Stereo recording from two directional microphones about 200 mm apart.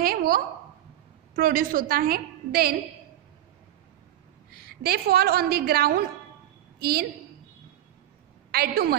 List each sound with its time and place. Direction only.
0.0 s a sound: 45° right (ahead or behind)
1.3 s a woman's voice: 45° right (ahead or behind)
4.6 s a woman's voice: 50° right (ahead or behind)
8.5 s a woman's voice: 50° right (ahead or behind)